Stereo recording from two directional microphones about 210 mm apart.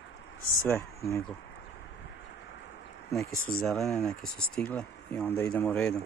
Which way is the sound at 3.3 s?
40° left (ahead or behind).